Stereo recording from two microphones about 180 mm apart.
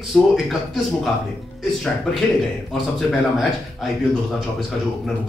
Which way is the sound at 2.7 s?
Centre (ahead or behind).